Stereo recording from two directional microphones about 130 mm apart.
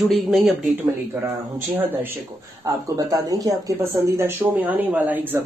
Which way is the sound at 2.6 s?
25° right (ahead or behind).